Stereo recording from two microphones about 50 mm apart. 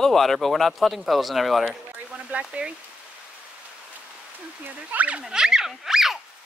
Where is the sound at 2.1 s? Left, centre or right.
Right.